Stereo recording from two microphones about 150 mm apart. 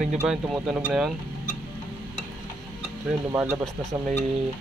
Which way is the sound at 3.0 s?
5° right (ahead or behind).